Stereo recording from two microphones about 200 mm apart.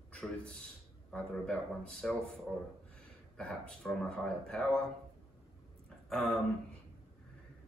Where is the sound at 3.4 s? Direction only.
5° left (ahead or behind).